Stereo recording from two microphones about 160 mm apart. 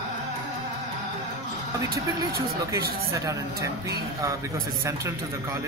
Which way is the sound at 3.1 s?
20° right (ahead or behind).